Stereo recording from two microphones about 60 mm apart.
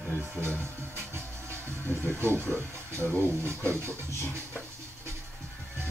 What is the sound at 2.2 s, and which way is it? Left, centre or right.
Speech, right.